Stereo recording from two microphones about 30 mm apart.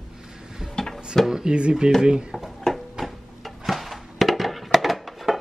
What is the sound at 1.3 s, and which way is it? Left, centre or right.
Speech, right.